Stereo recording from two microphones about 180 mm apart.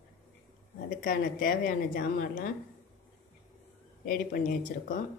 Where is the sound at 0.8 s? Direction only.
50° left (ahead or behind).